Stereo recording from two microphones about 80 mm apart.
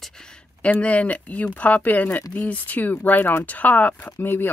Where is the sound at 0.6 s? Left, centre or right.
Centre.